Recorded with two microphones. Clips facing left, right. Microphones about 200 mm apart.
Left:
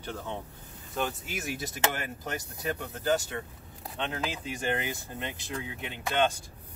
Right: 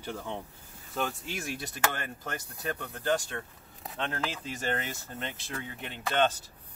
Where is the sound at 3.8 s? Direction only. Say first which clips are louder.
Even; centre (ahead or behind).